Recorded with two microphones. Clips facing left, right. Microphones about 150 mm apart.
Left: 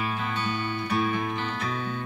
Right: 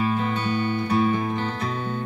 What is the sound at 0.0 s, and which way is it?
Music, 40° right (ahead or behind).